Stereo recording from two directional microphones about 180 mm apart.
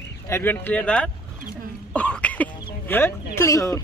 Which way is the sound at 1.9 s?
5° left (ahead or behind).